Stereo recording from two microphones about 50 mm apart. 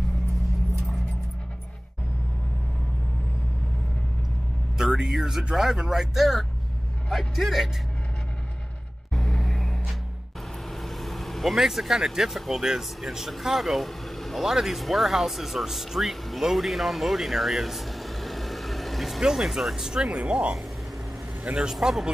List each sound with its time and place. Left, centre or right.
4.7 s speech: centre
9.1 s vehicle: centre
10.7 s speech: centre; by 20.5 s right
21.5 s speech: centre